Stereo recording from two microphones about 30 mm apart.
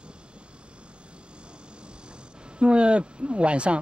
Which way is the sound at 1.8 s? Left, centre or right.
Right.